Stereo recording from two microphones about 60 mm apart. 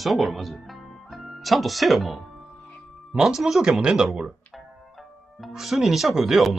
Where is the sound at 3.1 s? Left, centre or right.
Centre.